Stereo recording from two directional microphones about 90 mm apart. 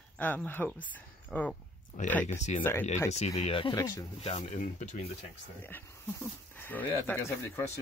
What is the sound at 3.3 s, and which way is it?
Speech, 85° left.